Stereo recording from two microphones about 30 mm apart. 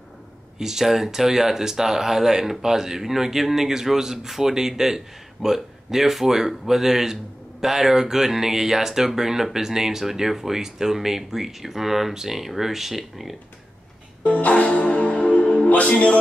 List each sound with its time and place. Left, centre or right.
0.6 s speech: centre
14.2 s music: left
14.6 s music: left
15.1 s music: left